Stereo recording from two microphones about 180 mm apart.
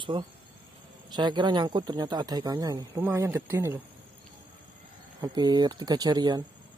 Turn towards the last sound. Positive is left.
turn(degrees=-25)  # may be behind; listen again after turning